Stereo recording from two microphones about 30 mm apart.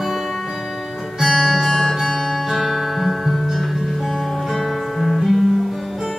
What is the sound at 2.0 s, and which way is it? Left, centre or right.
Music, centre.